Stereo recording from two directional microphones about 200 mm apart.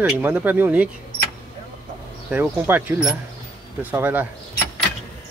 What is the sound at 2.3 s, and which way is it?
Speech, 10° right (ahead or behind).